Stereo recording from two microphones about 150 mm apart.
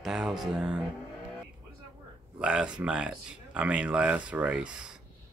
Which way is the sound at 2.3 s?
5° right (ahead or behind).